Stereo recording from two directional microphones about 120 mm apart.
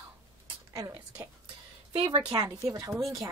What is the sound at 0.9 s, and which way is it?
Speech, 15° right (ahead or behind).